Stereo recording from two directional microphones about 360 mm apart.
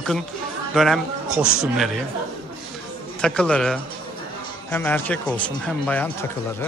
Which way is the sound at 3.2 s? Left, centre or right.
Centre.